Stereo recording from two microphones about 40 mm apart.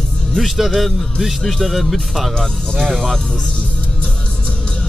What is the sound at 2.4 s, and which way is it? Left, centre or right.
Speech, centre.